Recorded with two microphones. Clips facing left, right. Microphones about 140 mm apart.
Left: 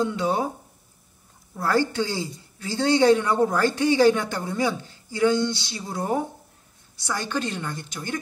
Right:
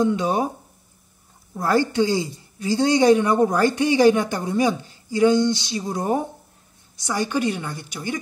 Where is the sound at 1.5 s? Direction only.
15° right (ahead or behind).